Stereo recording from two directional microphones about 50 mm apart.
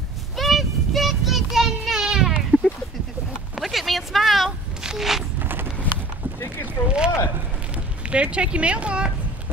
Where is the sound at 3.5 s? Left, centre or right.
Centre.